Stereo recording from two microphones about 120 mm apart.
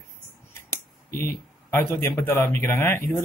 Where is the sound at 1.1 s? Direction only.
20° left (ahead or behind).